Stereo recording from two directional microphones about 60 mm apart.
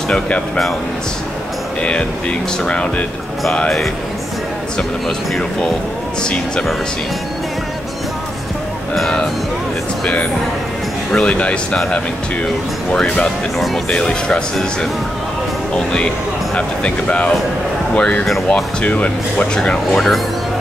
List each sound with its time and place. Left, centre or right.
1.8 s speech: centre
6.2 s speech: centre
11.1 s speech: centre
12.9 s speech: centre